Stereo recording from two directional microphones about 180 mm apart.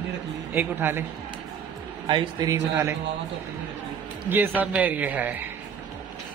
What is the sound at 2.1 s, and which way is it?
Speech, 25° right (ahead or behind).